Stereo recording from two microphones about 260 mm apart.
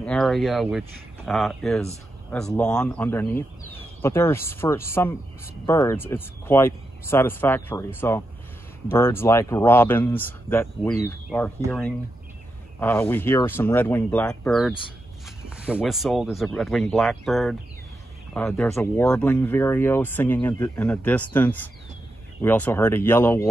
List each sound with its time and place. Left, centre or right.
0.0 s speech: centre
12.8 s speech: centre